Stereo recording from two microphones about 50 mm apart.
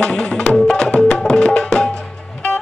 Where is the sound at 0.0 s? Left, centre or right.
Centre.